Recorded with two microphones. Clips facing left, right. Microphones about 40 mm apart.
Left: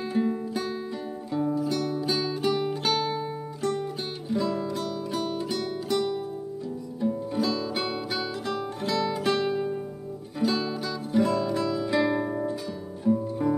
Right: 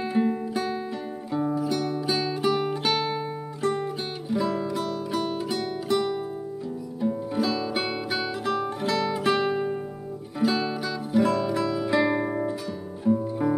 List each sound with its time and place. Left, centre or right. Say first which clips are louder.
0.0 s music: right 2 dB; centre